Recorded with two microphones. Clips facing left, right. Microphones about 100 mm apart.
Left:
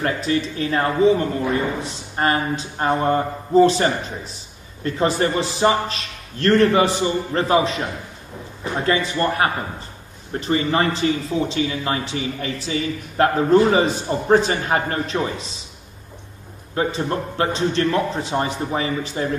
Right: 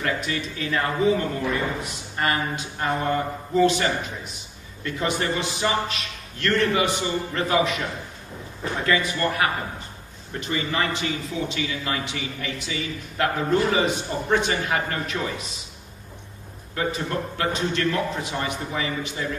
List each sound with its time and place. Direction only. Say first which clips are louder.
0.0 s a man's voice: left 6 dB; 30° left (ahead or behind)
16.7 s a man's voice: left 4 dB; 30° left (ahead or behind)